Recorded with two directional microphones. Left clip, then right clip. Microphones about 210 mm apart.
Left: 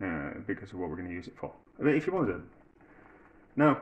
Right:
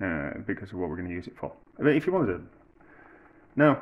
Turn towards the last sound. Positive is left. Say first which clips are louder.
# right 4 dB
turn(degrees=-30)  # may be behind; listen again after turning